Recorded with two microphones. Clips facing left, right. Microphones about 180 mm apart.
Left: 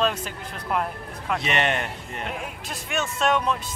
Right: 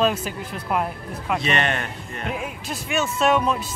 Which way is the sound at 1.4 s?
20° left (ahead or behind).